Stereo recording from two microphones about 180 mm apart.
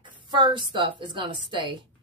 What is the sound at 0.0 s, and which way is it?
A woman's voice, 25° right (ahead or behind).